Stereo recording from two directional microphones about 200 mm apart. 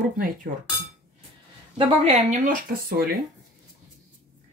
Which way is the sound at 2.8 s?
50° right (ahead or behind).